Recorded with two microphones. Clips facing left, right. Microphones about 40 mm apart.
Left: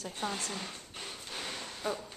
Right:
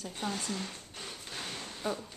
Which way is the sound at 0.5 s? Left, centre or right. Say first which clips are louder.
Right 1 dB; centre.